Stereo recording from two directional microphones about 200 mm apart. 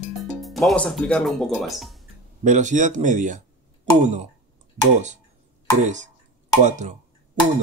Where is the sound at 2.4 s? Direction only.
40° right (ahead or behind).